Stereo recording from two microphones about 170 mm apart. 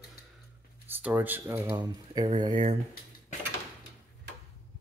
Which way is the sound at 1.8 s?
25° right (ahead or behind).